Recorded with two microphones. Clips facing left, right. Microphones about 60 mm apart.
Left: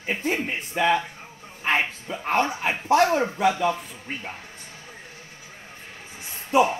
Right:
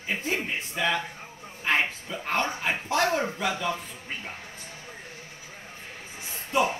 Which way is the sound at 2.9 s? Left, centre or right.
Left.